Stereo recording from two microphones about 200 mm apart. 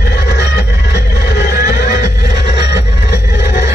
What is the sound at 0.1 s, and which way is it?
Music, 55° left (ahead or behind).